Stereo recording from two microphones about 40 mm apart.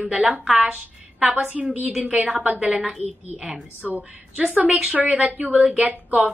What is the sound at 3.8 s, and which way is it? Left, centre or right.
A woman's voice, centre.